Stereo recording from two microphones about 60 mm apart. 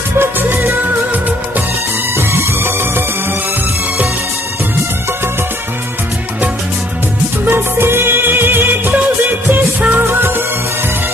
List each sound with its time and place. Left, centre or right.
0.2 s music: right
2.1 s music: right
7.4 s music: right
9.9 s music: right